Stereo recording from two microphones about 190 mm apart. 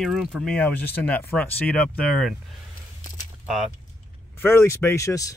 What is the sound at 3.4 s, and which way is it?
Speech, centre (ahead or behind).